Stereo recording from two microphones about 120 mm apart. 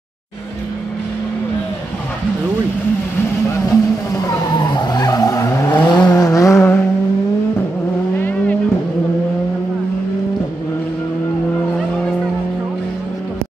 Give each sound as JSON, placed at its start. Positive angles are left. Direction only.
{"t": 3.5, "sound": "vehicle", "side_deg": 25}
{"t": 5.9, "sound": "vehicle", "side_deg": 35}
{"t": 8.2, "sound": "vehicle", "side_deg": 15}